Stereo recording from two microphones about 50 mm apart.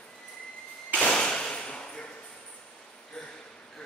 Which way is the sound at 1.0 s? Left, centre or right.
Left.